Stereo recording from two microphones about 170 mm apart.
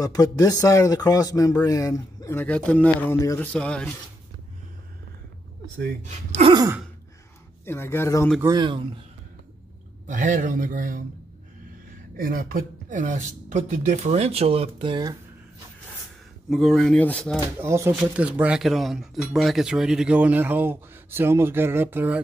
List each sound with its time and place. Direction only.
0.0 s speech: 20° left (ahead or behind)
6.0 s speech: 40° right (ahead or behind)
6.5 s speech: 20° right (ahead or behind)
7.6 s speech: 15° left (ahead or behind)
8.4 s speech: 20° right (ahead or behind)
10.0 s speech: 50° right (ahead or behind)
12.2 s speech: 60° right (ahead or behind); by 15.1 s 30° right (ahead or behind)
16.4 s speech: centre (ahead or behind)
17.6 s speech: 15° right (ahead or behind)